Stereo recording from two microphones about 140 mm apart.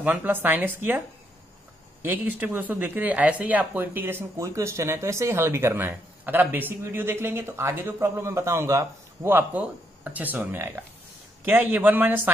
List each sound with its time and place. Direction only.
0.0 s speech: 15° right (ahead or behind)